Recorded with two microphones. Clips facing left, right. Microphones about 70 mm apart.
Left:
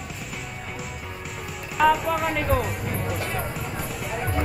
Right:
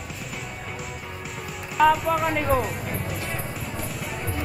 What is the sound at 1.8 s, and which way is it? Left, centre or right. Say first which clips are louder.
Music: right 1 dB; centre.